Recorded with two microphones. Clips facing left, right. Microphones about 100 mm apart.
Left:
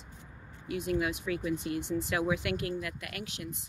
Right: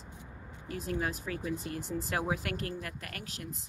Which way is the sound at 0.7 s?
40° right (ahead or behind).